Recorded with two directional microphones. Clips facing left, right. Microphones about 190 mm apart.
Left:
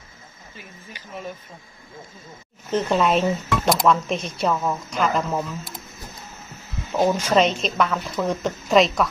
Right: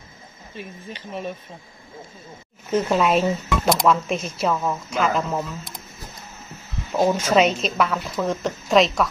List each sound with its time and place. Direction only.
0.6 s speech: 25° right (ahead or behind)
2.8 s a woman's voice: 5° right (ahead or behind)
6.9 s a woman's voice: 10° right (ahead or behind)